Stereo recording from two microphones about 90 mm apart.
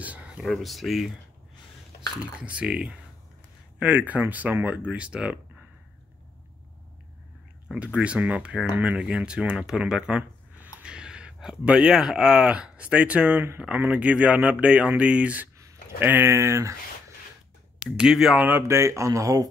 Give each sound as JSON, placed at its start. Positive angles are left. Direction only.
{"t": 0.0, "sound": "a sound", "side_deg": -15}
{"t": 0.4, "sound": "speech", "side_deg": 0}
{"t": 2.4, "sound": "speech", "side_deg": -10}
{"t": 7.6, "sound": "speech", "side_deg": -10}
{"t": 17.7, "sound": "speech", "side_deg": -5}
{"t": 18.6, "sound": "speech", "side_deg": -35}